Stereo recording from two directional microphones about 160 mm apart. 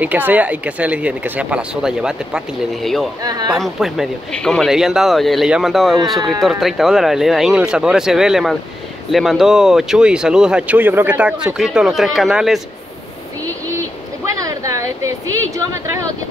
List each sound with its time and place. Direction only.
0.0 s speech: 10° right (ahead or behind)
3.3 s speech: 25° right (ahead or behind)
3.5 s speech: centre (ahead or behind)
13.7 s a sound: 20° right (ahead or behind)